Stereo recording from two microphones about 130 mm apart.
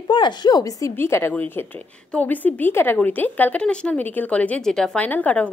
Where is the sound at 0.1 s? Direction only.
35° left (ahead or behind).